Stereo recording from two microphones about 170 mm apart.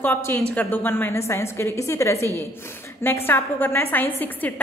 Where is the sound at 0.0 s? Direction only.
10° left (ahead or behind).